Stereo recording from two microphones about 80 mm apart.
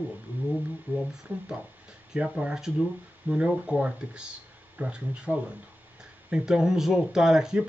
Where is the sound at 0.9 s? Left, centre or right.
Right.